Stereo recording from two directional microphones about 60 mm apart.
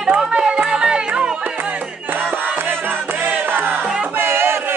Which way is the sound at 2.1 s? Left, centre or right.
Right.